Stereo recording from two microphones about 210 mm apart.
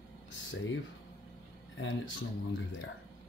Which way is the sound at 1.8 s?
65° left (ahead or behind).